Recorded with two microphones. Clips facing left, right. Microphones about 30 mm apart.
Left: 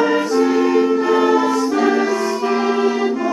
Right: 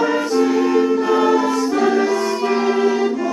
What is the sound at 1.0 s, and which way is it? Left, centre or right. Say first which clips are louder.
Choir: left 1 dB; centre.